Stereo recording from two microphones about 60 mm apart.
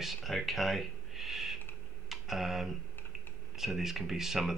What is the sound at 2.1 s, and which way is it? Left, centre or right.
Tick, centre.